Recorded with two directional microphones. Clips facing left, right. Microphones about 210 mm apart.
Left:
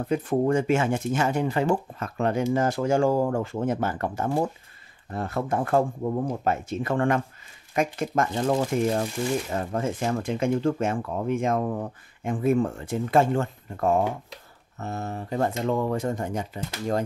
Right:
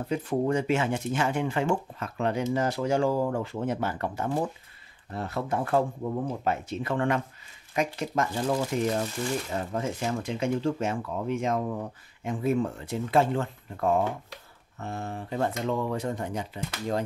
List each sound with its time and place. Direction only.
0.1 s speech: 50° left (ahead or behind)